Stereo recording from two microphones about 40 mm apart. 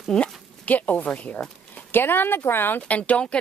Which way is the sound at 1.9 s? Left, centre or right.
Left.